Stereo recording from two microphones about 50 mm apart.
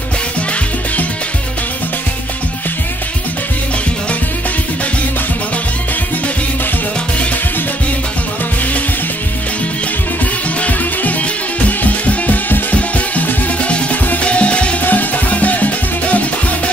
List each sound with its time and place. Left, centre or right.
10.6 s music: left
14.8 s music: left